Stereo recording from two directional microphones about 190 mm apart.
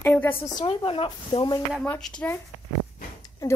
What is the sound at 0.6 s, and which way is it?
Speech, 25° left (ahead or behind).